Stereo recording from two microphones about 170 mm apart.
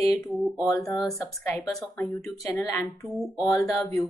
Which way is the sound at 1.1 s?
20° left (ahead or behind).